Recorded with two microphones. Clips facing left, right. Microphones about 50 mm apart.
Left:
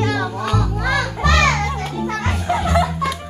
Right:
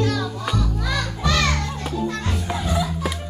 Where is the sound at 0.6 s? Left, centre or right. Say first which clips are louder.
Left 7 dB; left.